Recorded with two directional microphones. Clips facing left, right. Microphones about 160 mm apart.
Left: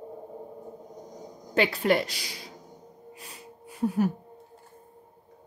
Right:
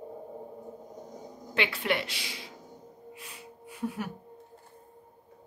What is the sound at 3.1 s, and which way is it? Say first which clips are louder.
Music: left 1 dB; 40° left (ahead or behind).